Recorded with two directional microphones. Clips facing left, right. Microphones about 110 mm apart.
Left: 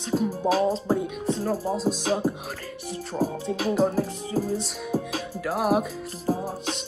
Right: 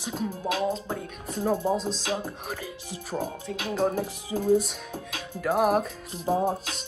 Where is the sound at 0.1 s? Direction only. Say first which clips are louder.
Left 7 dB; 5° left (ahead or behind).